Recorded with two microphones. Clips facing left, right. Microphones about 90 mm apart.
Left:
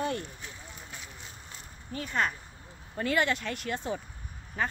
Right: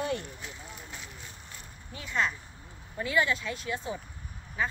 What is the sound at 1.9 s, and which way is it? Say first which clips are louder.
Speech: left 1 dB; 45° left (ahead or behind).